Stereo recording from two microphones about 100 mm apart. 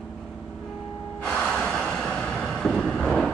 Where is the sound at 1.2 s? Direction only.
10° left (ahead or behind).